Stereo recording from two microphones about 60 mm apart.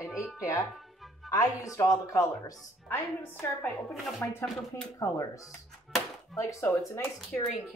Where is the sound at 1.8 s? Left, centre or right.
Left.